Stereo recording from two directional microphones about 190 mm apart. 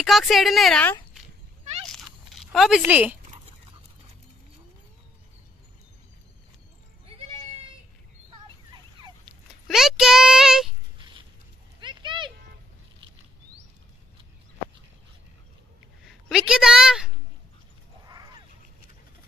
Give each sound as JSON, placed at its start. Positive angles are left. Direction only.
{"t": 0.0, "sound": "a woman's voice", "side_deg": 0}
{"t": 2.3, "sound": "speech", "side_deg": 0}
{"t": 7.1, "sound": "goat", "side_deg": -30}
{"t": 9.3, "sound": "speech", "side_deg": 0}
{"t": 11.0, "sound": "a sound", "side_deg": -25}
{"t": 16.3, "sound": "a woman's voice", "side_deg": -5}
{"t": 18.0, "sound": "a sound", "side_deg": -20}